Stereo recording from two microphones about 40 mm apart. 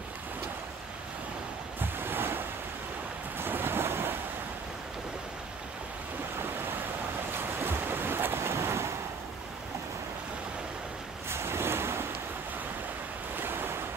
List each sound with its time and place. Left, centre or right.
1.8 s waves: right
7.3 s waves: right
11.2 s waves: right
13.4 s waves: right